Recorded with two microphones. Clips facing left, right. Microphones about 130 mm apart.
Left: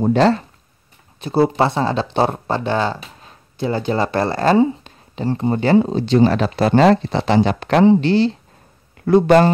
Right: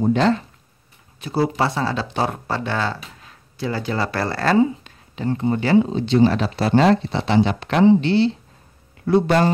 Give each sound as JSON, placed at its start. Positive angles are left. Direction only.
{"t": 0.1, "sound": "speech", "side_deg": 35}
{"t": 1.2, "sound": "a man's voice", "side_deg": 25}